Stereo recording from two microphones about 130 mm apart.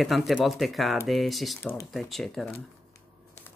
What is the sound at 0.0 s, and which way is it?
Speech, centre (ahead or behind).